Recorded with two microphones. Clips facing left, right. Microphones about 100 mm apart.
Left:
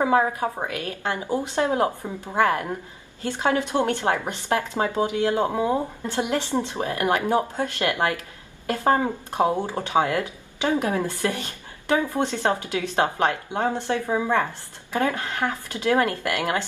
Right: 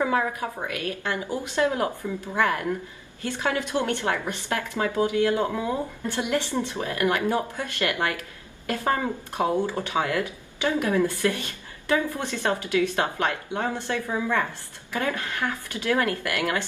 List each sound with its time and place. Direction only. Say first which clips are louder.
0.0 s a woman's voice: left 4 dB; 30° left (ahead or behind)